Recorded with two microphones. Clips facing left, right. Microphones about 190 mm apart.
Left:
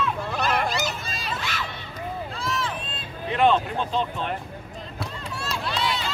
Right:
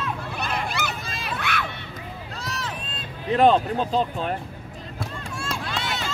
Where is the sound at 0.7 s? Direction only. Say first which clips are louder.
Left 1 dB; 60° right (ahead or behind).